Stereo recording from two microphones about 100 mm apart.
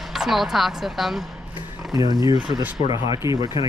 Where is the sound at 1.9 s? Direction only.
40° right (ahead or behind).